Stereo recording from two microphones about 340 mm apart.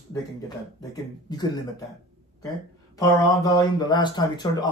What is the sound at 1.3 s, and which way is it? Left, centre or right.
Speech, centre.